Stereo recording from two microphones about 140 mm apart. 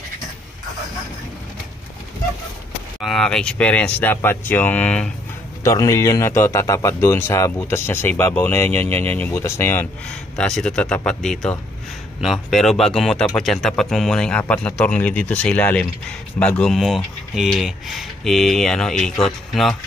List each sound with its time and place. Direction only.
3.0 s speech: 5° left (ahead or behind)
5.6 s speech: 25° left (ahead or behind)
10.3 s speech: 5° left (ahead or behind)